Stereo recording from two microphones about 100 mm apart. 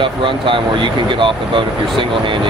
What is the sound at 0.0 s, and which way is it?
Speech, 55° right (ahead or behind).